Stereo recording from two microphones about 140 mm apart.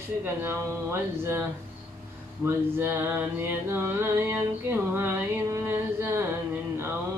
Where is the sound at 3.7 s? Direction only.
15° right (ahead or behind).